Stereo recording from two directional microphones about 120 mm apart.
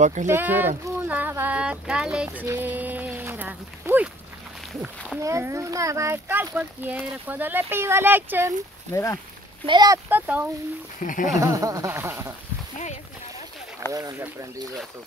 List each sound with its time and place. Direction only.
0.0 s speech: 90° right
0.3 s speech: 15° right (ahead or behind)
1.0 s a sound: 15° right (ahead or behind)
5.2 s speech: 25° right (ahead or behind)
8.9 s speech: 25° left (ahead or behind)
9.7 s speech: 35° right (ahead or behind)
10.0 s speech: 15° right (ahead or behind)
11.0 s speech: 90° left
11.3 s speech: 30° right (ahead or behind)
12.7 s speech: 75° left (ahead or behind)